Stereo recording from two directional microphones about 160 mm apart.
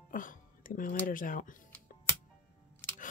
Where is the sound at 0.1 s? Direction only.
60° left (ahead or behind).